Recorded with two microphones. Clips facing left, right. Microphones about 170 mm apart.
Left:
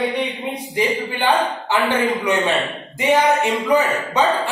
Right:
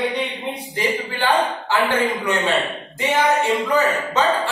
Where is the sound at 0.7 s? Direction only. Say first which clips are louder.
Left 3 dB; 15° left (ahead or behind).